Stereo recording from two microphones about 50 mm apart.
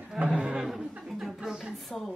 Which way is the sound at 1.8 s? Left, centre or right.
Centre.